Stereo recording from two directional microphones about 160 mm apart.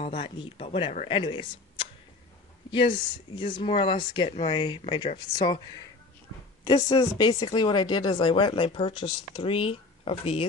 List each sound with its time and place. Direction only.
0.0 s speech: 35° left (ahead or behind)
6.6 s speech: 25° left (ahead or behind)